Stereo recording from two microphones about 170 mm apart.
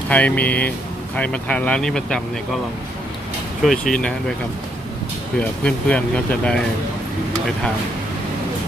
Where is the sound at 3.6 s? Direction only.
Centre (ahead or behind).